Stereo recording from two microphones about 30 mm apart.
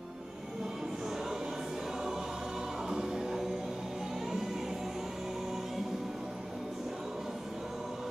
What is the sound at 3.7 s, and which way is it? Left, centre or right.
Music, centre.